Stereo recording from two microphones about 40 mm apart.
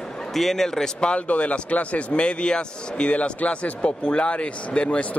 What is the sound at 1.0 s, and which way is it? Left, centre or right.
Speech, left.